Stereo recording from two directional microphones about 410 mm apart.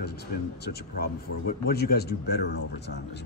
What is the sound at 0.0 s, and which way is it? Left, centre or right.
Speech, left.